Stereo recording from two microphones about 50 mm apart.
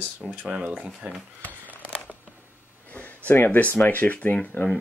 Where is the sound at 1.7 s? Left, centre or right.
Right.